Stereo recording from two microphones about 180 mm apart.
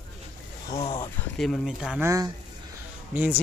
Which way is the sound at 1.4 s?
Centre (ahead or behind).